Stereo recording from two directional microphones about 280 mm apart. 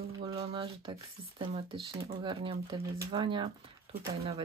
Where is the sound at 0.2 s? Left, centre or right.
Centre.